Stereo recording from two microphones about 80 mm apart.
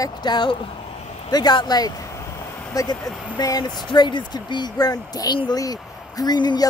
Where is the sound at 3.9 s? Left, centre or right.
Left.